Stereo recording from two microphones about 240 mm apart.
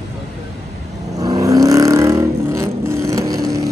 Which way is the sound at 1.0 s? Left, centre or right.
Centre.